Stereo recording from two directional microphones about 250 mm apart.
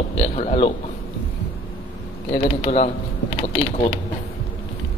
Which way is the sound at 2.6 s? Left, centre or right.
Left.